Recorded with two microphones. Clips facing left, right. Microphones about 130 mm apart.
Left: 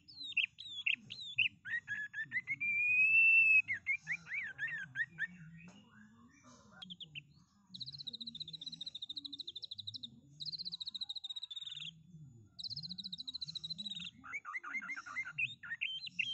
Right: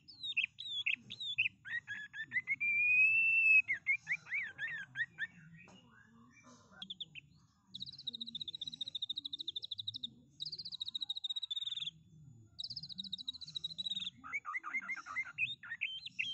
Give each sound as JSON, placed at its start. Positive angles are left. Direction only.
{"t": 0.1, "sound": "bird", "side_deg": -60}
{"t": 3.5, "sound": "wild animals", "side_deg": -55}
{"t": 6.8, "sound": "bird", "side_deg": -5}
{"t": 7.7, "sound": "music", "side_deg": -60}
{"t": 12.5, "sound": "bird", "side_deg": -60}
{"t": 13.0, "sound": "frog", "side_deg": -65}